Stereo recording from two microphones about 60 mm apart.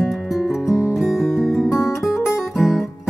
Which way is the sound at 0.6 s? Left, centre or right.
Left.